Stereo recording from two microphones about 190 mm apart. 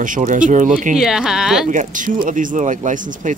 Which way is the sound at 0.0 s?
45° right (ahead or behind).